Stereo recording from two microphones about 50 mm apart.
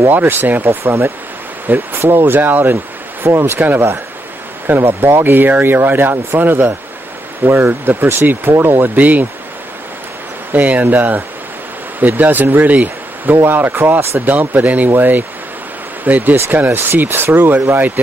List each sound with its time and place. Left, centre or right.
0.1 s speech: right
2.3 s speech: right
3.3 s speech: right
3.5 s speech: right
4.6 s speech: right
10.5 s speech: right
16.7 s speech: right